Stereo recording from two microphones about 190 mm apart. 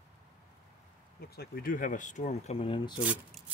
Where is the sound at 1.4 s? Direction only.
50° left (ahead or behind); by 2.9 s 25° left (ahead or behind).